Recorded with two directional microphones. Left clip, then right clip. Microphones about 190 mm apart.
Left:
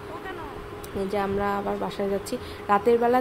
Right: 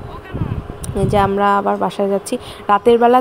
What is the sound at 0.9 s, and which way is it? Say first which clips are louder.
A woman's voice: right 11 dB; 40° right (ahead or behind).